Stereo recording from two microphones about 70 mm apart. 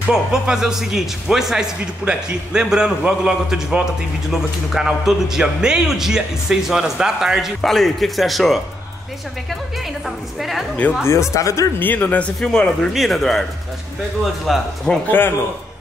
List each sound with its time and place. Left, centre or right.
0.1 s a man's voice: centre
10.0 s a woman's voice: centre
11.1 s speech: left
11.8 s speech: left
12.4 s speech: centre
12.9 s a woman's voice: centre
14.5 s a woman's voice: centre
15.0 s speech: left